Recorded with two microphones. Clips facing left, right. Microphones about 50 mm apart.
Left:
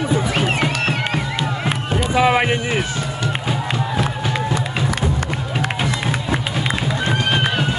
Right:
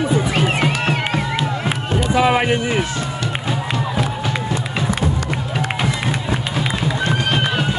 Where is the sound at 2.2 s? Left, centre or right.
Left.